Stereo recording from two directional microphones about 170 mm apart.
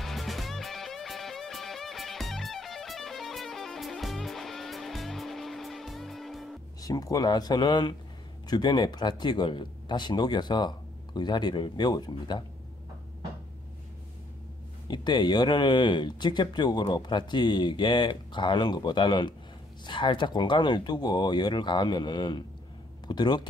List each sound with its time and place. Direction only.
0.0 s music: centre (ahead or behind)
6.8 s speech: 20° left (ahead or behind)
14.9 s speech: 25° left (ahead or behind)